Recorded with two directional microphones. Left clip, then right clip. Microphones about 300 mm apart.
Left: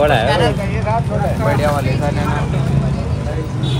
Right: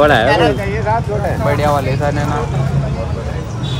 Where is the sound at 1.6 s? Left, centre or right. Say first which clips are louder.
Right 3 dB; right.